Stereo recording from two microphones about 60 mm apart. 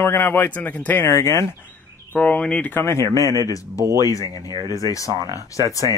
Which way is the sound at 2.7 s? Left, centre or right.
Left.